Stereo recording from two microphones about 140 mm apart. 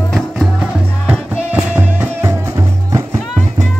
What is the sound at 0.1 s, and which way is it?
Music, 5° right (ahead or behind).